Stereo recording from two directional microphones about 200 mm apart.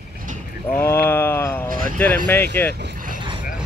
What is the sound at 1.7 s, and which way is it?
Speech, 45° right (ahead or behind).